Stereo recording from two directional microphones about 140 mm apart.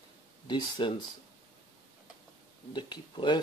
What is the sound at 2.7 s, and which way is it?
Speech, 30° left (ahead or behind).